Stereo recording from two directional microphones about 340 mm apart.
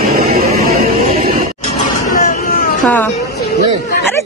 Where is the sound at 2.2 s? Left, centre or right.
Left.